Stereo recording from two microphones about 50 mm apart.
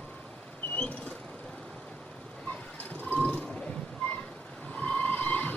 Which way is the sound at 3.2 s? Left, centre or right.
Centre.